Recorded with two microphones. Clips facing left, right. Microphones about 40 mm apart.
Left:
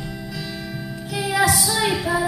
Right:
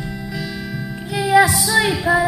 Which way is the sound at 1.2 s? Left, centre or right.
Centre.